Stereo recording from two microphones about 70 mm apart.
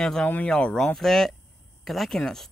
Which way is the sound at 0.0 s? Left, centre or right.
Centre.